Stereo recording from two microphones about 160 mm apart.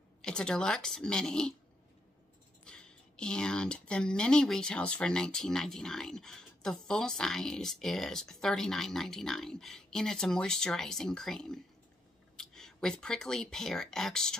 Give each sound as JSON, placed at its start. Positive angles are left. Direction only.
{"t": 0.2, "sound": "speech", "side_deg": 5}
{"t": 2.6, "sound": "speech", "side_deg": 5}